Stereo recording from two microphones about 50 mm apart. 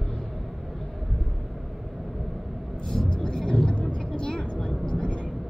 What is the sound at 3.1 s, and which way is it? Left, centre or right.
Vehicle, centre.